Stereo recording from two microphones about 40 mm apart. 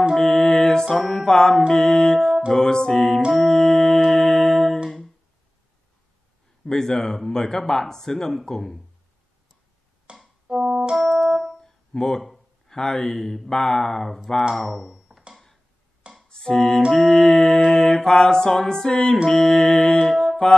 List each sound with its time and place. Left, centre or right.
0.1 s music: centre
0.9 s music: centre
1.2 s speech: centre
4.8 s music: centre
6.6 s speech: centre
10.1 s music: right
10.5 s keyboard: centre
11.0 s music: centre
11.6 s music: centre
12.6 s speech: centre
14.5 s typing: centre
16.3 s music: centre
16.9 s speech: centre